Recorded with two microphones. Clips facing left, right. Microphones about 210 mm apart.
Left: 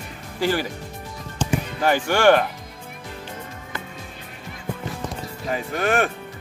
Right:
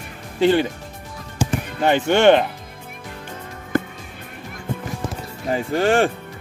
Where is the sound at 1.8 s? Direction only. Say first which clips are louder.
Right 3 dB; 20° right (ahead or behind).